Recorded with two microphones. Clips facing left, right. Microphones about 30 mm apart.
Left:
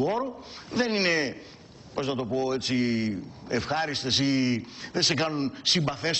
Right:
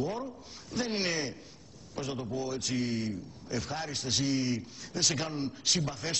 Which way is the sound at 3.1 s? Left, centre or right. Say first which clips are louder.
Left 6 dB; left.